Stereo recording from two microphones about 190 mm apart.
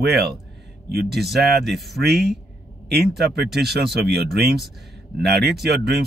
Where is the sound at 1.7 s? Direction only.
Centre (ahead or behind).